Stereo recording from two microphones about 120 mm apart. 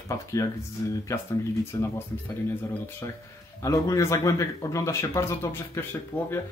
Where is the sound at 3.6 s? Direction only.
25° left (ahead or behind).